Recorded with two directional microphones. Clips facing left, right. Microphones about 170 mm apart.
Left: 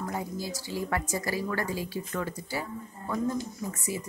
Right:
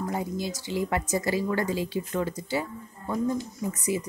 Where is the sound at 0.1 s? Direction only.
20° right (ahead or behind).